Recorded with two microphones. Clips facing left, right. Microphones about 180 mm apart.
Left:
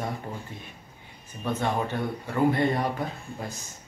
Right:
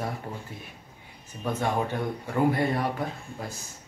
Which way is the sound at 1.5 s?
10° right (ahead or behind).